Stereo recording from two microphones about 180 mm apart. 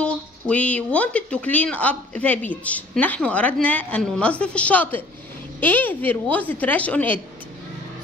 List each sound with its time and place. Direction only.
0.0 s speech: 5° left (ahead or behind)